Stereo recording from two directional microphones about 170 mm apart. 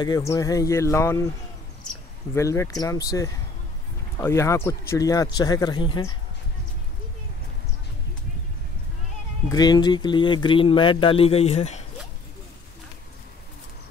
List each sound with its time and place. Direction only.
0.0 s speech: 20° left (ahead or behind)
2.3 s speech: 15° left (ahead or behind)
9.5 s speech: 25° left (ahead or behind); by 11.8 s 40° left (ahead or behind)